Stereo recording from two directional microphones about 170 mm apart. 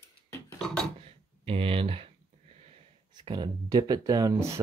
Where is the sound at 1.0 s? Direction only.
35° right (ahead or behind).